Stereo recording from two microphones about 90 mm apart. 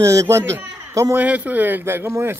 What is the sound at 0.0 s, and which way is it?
A man's voice, 35° right (ahead or behind).